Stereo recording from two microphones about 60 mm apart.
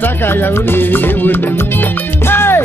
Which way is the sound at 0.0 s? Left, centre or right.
Left.